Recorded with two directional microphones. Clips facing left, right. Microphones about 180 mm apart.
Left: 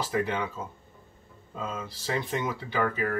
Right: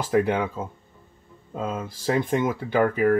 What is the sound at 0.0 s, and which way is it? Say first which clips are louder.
Speech: right 7 dB; 50° right (ahead or behind).